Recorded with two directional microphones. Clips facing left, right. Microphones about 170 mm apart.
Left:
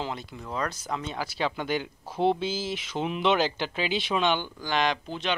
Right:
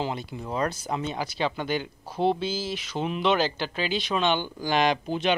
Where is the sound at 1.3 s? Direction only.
10° left (ahead or behind).